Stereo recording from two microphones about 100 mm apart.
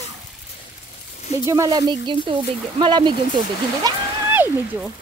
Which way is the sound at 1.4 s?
30° right (ahead or behind).